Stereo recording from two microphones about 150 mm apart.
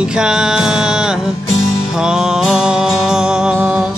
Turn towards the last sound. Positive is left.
turn(degrees=-5)  # may be behind; listen again after turning